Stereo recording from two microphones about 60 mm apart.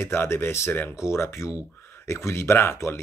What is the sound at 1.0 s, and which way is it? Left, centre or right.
Speech, left.